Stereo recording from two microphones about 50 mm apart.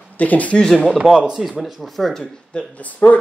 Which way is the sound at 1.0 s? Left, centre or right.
Centre.